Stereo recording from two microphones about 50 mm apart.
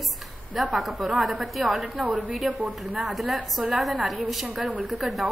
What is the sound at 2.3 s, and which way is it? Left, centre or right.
A woman's voice, centre.